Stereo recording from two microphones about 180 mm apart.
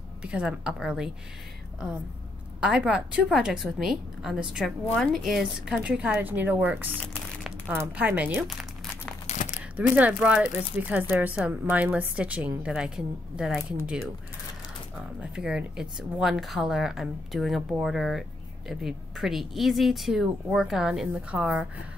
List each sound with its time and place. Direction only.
0.2 s a woman's voice: 5° right (ahead or behind)
2.6 s a woman's voice: 5° right (ahead or behind)
9.3 s crumpling: 40° left (ahead or behind)
9.8 s a woman's voice: 10° right (ahead or behind)
15.1 s a woman's voice: 5° right (ahead or behind)